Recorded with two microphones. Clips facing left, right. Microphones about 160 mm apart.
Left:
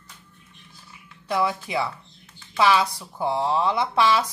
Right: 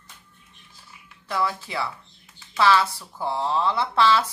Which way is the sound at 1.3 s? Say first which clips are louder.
Left 3 dB; 15° left (ahead or behind).